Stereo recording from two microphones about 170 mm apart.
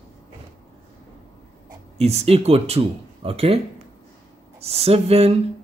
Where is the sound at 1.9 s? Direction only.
40° right (ahead or behind).